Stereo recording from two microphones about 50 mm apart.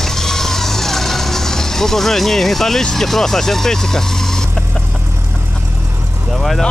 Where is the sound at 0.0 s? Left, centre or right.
Centre.